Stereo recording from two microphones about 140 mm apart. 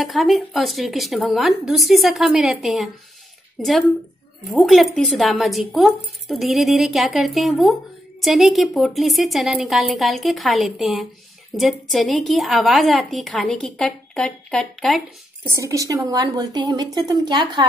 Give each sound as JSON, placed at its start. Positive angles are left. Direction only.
{"t": 0.0, "sound": "a woman's voice", "side_deg": 0}
{"t": 4.5, "sound": "a woman's voice", "side_deg": 0}
{"t": 15.6, "sound": "a woman's voice", "side_deg": -25}